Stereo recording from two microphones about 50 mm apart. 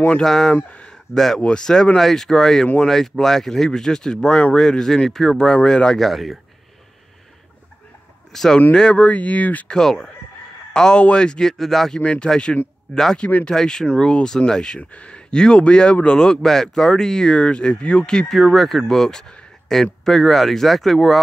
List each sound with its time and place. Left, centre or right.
0.2 s speech: centre
0.6 s speech: left
0.8 s a sound: centre
1.4 s speech: centre
5.9 s speech: centre
8.3 s speech: centre
9.0 s speech: left
9.7 s speech: centre
11.5 s speech: centre
12.0 s speech: left
18.3 s speech: centre